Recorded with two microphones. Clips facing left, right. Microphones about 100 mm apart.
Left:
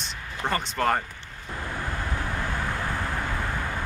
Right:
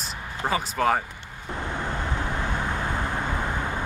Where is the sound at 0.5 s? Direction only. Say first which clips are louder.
Right 2 dB; 5° right (ahead or behind).